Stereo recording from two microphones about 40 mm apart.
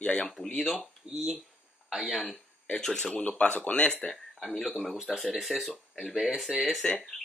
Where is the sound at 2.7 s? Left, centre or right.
Centre.